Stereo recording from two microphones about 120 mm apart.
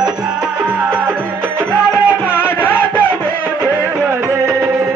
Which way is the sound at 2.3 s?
15° left (ahead or behind).